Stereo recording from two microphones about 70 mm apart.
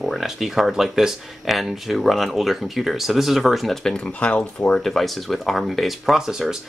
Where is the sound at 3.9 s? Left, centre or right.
Centre.